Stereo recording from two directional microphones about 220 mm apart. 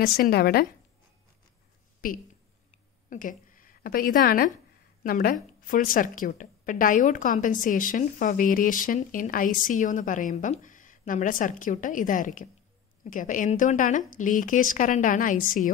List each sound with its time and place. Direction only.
0.0 s speech: 45° left (ahead or behind)
2.0 s a woman's voice: 40° left (ahead or behind)
2.7 s a sound: 35° left (ahead or behind)
5.0 s a woman's voice: 40° left (ahead or behind)